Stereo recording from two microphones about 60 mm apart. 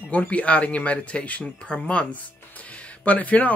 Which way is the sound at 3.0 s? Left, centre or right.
Left.